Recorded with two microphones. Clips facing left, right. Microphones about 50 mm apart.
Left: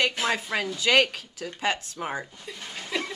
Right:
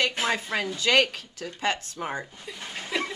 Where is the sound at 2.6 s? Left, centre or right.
Centre.